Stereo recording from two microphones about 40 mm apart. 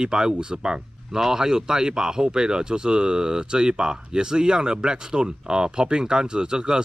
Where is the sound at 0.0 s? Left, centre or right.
Centre.